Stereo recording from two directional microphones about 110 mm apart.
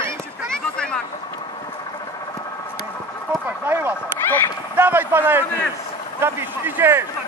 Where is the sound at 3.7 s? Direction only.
20° right (ahead or behind).